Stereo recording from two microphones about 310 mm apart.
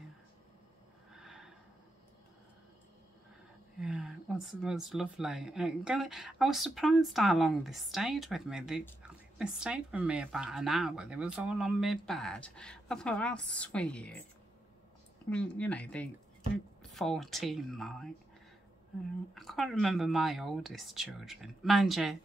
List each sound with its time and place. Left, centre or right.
1.2 s snort: centre
3.8 s speech: centre
15.2 s speech: centre
19.3 s speech: centre